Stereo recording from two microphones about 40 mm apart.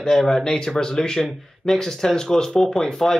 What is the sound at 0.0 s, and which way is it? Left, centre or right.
Speech, centre.